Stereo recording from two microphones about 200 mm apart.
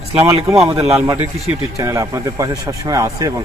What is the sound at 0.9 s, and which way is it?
Speech, 10° right (ahead or behind).